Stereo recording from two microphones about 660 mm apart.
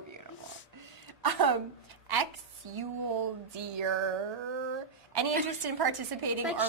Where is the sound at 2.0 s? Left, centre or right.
Right.